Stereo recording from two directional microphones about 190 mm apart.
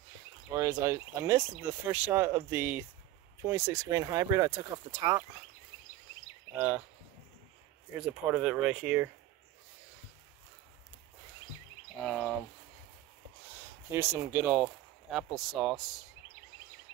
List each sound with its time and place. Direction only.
0.5 s speech: 20° right (ahead or behind)
6.5 s speech: 10° right (ahead or behind)
8.0 s speech: centre (ahead or behind)
12.0 s speech: 5° left (ahead or behind)
13.8 s speech: 15° right (ahead or behind)